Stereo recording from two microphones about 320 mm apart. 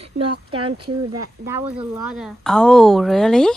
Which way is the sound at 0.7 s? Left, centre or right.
Right.